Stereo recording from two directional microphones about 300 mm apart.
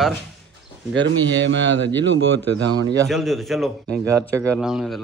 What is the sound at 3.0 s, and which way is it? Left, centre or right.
Speech, centre.